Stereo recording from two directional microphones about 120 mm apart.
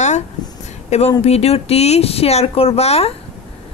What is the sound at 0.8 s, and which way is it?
Speech, 65° left (ahead or behind).